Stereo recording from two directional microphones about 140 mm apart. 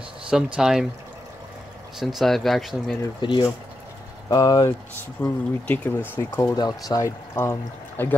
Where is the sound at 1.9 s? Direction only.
Centre (ahead or behind).